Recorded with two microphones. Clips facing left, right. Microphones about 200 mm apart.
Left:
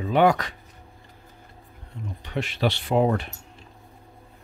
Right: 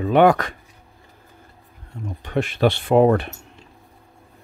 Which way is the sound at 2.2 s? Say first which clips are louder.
Right 6 dB; 50° right (ahead or behind).